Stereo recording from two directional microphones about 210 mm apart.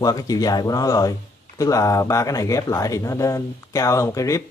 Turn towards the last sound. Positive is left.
turn(degrees=15)  # may be behind; listen again after turning